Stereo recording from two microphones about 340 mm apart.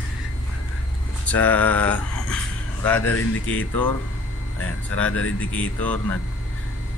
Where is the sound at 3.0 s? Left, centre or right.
Left.